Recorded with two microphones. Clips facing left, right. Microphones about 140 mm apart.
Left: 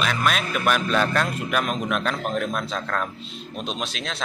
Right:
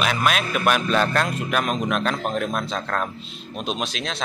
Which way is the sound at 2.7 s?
15° right (ahead or behind).